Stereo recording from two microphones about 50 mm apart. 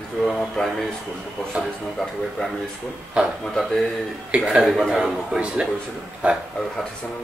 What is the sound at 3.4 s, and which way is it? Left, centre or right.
Speech, centre.